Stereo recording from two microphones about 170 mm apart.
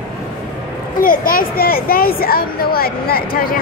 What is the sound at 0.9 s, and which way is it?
Speech, 55° left (ahead or behind).